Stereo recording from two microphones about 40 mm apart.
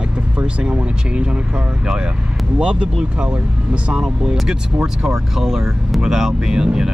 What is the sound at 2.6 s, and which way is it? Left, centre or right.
Speech, right.